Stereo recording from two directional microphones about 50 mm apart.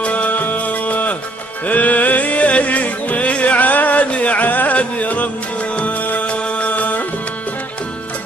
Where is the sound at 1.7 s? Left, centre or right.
Left.